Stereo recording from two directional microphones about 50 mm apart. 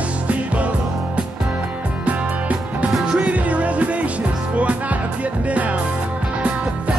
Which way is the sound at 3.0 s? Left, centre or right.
Centre.